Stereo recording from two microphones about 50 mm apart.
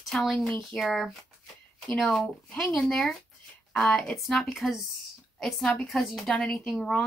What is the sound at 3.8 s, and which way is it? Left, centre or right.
Speech, centre.